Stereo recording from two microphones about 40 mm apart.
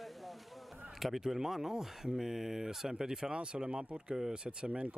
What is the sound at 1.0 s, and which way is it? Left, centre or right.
Speech, centre.